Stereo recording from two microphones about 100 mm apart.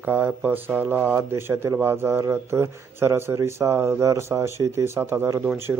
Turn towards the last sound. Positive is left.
turn(degrees=-20)  # may be behind; listen again after turning